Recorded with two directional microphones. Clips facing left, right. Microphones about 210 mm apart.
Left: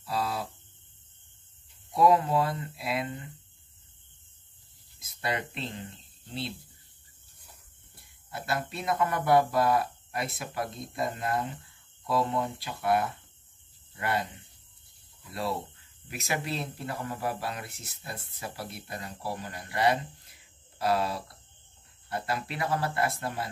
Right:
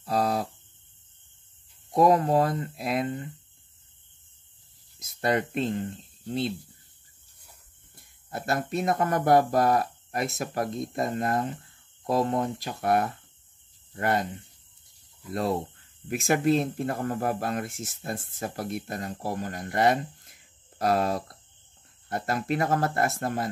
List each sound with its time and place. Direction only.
0.0 s hum: 45° right (ahead or behind)
1.9 s speech: 45° right (ahead or behind)
4.9 s speech: 45° right (ahead or behind)
7.9 s speech: 45° right (ahead or behind)